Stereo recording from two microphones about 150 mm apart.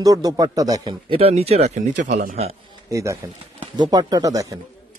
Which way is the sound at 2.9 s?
20° right (ahead or behind).